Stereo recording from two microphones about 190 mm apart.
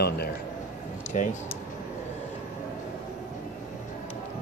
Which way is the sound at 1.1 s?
40° left (ahead or behind).